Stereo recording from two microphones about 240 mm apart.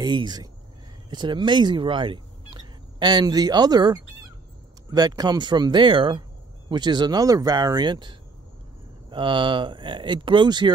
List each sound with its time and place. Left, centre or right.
0.0 s speech: centre